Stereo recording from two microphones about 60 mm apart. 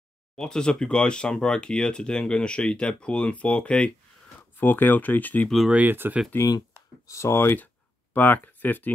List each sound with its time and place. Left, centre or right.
0.4 s speech: centre
4.4 s speech: left
5.9 s speech: right
6.3 s speech: left
7.1 s speech: left
7.5 s a sound: left